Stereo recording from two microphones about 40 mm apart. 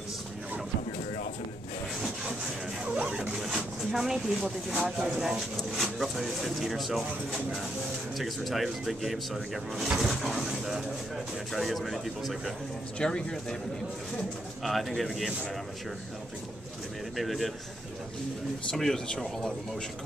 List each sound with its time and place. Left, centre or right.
2.8 s printer: right
3.3 s a sound: centre
4.3 s speech: right
5.0 s speech: centre
5.8 s speech: centre
8.2 s speech: centre
13.0 s speech: centre
14.6 s speech: centre
17.2 s speech: centre
18.7 s speech: centre